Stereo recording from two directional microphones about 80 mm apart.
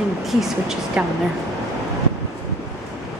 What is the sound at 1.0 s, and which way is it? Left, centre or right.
Speech, centre.